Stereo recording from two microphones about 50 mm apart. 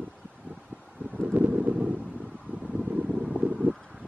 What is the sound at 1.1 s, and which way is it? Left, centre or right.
Wind, right.